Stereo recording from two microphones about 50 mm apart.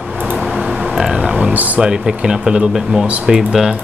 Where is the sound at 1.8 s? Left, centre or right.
Centre.